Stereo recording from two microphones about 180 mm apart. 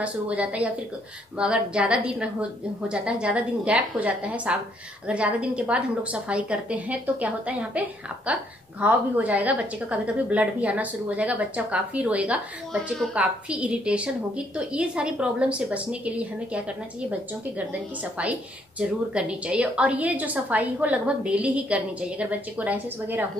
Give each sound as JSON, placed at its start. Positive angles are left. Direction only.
{"t": 0.0, "sound": "a woman's voice", "side_deg": -5}
{"t": 18.8, "sound": "a woman's voice", "side_deg": -5}